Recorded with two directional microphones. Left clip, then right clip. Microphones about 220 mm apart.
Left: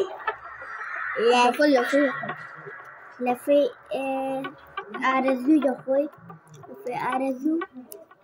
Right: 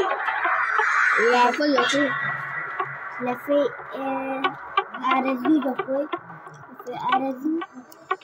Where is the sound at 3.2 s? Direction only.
25° left (ahead or behind).